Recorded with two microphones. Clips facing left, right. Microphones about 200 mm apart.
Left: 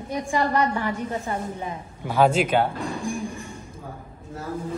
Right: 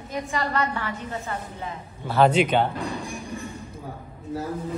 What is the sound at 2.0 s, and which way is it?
Speech, 10° left (ahead or behind).